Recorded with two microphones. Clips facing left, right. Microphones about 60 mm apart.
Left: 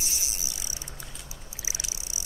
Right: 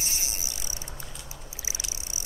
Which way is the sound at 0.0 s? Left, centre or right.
Right.